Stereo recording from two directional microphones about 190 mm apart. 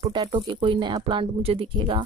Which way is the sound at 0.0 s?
25° right (ahead or behind).